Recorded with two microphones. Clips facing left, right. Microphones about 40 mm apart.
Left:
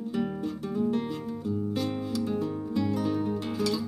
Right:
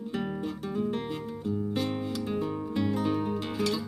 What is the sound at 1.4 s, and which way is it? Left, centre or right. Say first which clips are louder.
Music: even; centre.